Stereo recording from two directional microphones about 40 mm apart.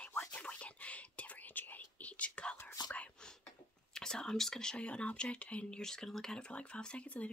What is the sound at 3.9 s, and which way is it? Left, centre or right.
Speech, centre.